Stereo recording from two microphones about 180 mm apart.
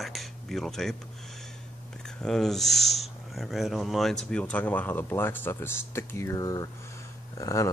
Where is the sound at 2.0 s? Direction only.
5° left (ahead or behind).